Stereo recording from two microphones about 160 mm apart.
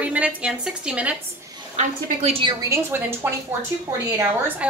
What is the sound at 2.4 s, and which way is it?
A woman's voice, 20° right (ahead or behind).